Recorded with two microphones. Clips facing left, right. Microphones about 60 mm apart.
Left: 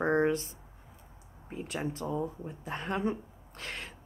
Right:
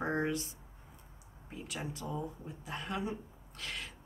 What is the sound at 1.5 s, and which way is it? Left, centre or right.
Speech, left.